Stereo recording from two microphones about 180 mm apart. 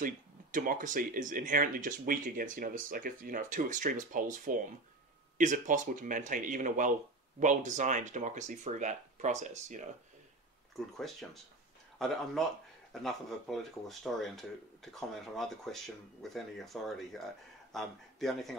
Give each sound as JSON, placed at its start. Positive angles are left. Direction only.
{"t": 0.0, "sound": "speech", "side_deg": -50}
{"t": 12.0, "sound": "speech", "side_deg": 0}